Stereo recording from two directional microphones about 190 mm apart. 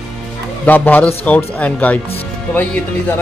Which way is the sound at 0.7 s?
10° left (ahead or behind).